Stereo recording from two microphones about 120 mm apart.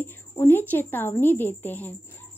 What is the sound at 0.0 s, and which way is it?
Speech, 15° left (ahead or behind).